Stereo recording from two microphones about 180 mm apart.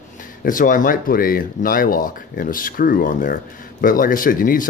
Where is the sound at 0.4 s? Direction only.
50° left (ahead or behind).